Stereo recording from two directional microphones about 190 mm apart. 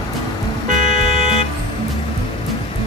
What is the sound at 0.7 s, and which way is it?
Vehicle, 40° right (ahead or behind).